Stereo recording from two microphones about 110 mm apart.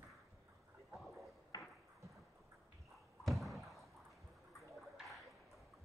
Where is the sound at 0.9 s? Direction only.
Centre (ahead or behind).